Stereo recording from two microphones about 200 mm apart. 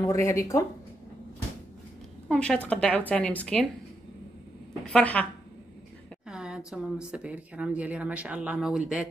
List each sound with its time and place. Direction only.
0.0 s a woman's voice: 15° left (ahead or behind)
2.2 s a woman's voice: 5° left (ahead or behind)
4.9 s a woman's voice: 5° left (ahead or behind)
6.2 s speech: 5° right (ahead or behind)